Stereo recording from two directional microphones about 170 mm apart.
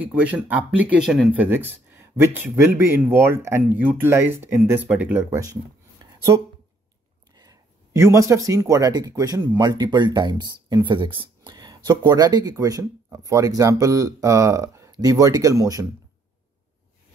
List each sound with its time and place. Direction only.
0.0 s speech: 10° right (ahead or behind)
6.0 s a sound: 25° right (ahead or behind)
7.3 s speech: 20° right (ahead or behind)